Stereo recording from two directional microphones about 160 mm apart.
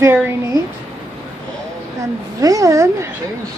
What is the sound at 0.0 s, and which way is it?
Speech, 20° right (ahead or behind).